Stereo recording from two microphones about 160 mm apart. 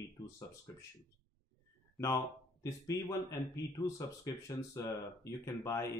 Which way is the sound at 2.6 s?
20° left (ahead or behind).